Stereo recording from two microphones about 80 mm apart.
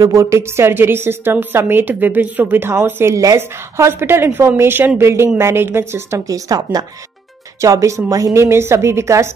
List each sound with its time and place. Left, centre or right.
0.0 s a woman's voice: right
7.6 s a woman's voice: right